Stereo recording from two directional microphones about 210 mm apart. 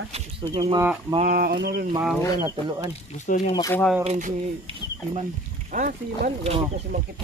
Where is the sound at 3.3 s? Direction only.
35° left (ahead or behind).